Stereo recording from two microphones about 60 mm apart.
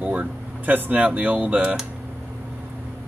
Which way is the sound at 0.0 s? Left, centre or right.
Right.